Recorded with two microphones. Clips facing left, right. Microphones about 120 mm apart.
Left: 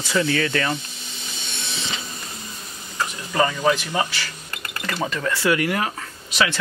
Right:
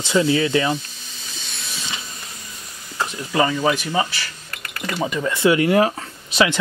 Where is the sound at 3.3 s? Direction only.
10° right (ahead or behind).